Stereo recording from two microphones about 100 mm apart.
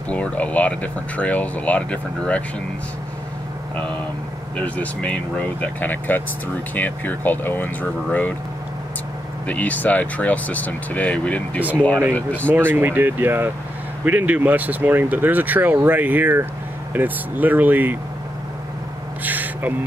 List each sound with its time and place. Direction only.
0.1 s speech: 15° left (ahead or behind)
4.6 s speech: 15° left (ahead or behind)
9.5 s speech: 15° left (ahead or behind)
12.5 s speech: 20° right (ahead or behind)
19.2 s gasp: 15° right (ahead or behind)